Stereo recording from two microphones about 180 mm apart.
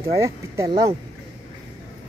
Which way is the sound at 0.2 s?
20° right (ahead or behind).